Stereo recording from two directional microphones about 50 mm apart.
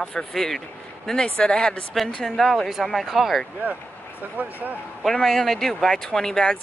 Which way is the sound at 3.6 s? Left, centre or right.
Right.